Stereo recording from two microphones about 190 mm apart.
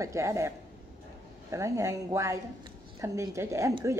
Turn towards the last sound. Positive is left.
turn(degrees=-15)  # may be behind; listen again after turning